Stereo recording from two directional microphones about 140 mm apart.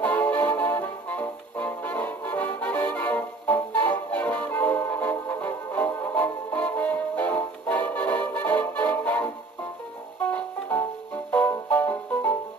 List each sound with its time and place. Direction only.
0.0 s music: 10° left (ahead or behind)